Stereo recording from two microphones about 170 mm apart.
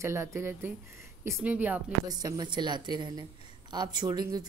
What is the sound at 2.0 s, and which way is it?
Speech, 20° right (ahead or behind).